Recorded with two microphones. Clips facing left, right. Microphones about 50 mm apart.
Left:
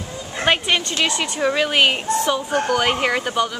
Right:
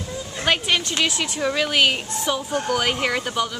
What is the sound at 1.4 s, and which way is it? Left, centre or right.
Speech, centre.